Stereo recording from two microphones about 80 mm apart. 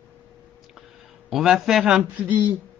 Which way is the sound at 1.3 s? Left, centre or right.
Centre.